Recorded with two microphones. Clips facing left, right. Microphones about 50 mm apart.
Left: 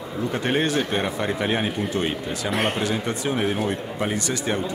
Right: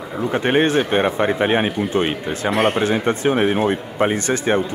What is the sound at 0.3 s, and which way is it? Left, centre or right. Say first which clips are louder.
Speech: right 6 dB; right.